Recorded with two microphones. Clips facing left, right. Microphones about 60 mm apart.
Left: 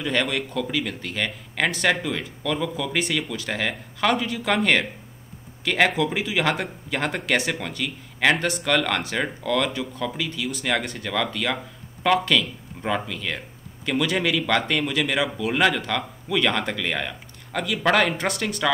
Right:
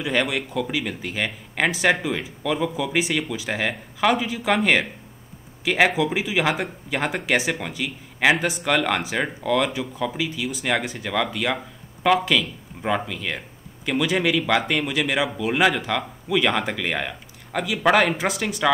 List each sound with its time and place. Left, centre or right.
0.0 s speech: centre